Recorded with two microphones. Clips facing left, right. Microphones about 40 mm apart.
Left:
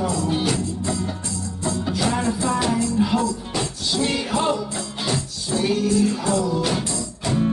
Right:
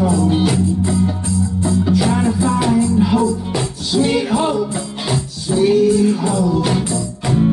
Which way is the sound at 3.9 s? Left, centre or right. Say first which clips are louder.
Right 7 dB; centre.